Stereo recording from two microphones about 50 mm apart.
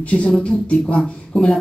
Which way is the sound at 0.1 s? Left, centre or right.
Left.